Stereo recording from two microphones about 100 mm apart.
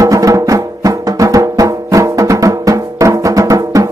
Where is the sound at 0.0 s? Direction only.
35° right (ahead or behind).